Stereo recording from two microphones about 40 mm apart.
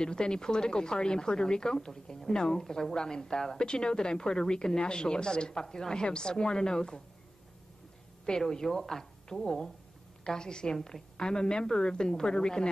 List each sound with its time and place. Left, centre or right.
0.0 s speech: centre
8.3 s a woman's voice: centre